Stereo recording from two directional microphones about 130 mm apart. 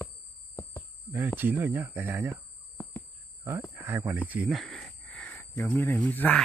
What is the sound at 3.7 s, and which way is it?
Speech, 15° right (ahead or behind).